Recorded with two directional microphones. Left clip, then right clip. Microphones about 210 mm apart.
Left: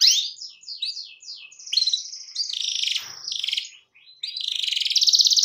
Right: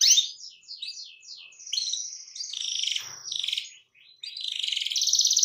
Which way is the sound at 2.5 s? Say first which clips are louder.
Left 3 dB; 20° left (ahead or behind).